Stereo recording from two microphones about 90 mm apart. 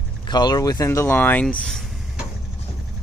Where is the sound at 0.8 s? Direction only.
30° left (ahead or behind).